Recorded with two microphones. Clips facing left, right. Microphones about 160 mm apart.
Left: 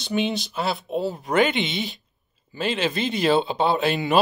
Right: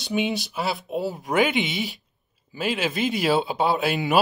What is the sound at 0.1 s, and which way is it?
Speech, 10° right (ahead or behind).